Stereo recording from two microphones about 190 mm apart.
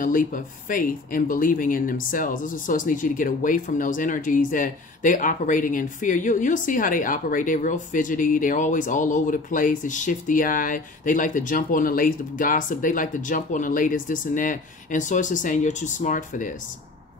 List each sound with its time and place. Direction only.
0.0 s speech: 45° left (ahead or behind)